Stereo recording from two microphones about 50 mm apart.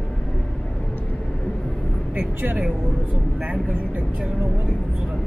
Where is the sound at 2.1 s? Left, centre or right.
Right.